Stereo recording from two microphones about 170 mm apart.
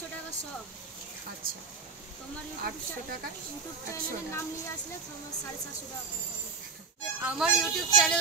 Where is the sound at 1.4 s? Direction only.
55° right (ahead or behind).